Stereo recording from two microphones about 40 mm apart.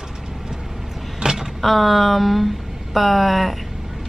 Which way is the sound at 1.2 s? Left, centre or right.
Centre.